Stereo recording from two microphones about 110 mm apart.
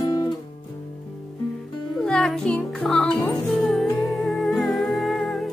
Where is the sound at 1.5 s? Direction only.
Centre (ahead or behind).